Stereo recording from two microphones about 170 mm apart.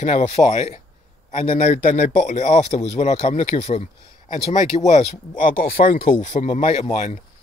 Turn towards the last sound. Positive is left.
turn(degrees=45)  # may be behind; listen again after turning